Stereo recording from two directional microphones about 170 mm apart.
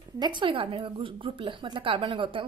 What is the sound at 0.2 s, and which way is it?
A woman's voice, 25° right (ahead or behind).